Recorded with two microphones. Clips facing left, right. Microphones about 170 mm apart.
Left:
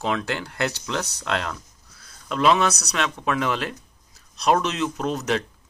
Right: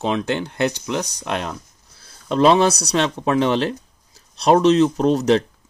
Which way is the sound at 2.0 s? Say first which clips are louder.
Right 5 dB; 30° right (ahead or behind).